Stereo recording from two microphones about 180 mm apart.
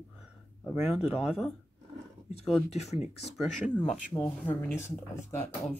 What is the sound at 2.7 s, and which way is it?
Speech, 40° left (ahead or behind).